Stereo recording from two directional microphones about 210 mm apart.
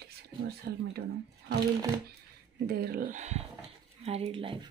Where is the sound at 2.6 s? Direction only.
45° right (ahead or behind); by 4.6 s 25° right (ahead or behind).